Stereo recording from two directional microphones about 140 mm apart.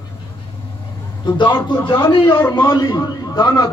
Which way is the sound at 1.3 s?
30° left (ahead or behind).